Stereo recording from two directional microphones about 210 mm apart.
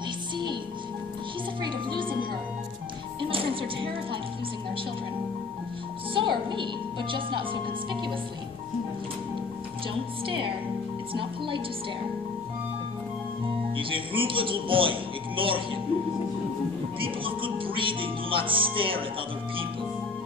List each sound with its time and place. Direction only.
1.6 s music: 20° right (ahead or behind)
3.2 s music: 25° right (ahead or behind)
6.1 s a child's voice: 25° right (ahead or behind)
10.2 s music: 25° right (ahead or behind)
13.7 s music: 25° right (ahead or behind)
17.0 s music: 25° right (ahead or behind)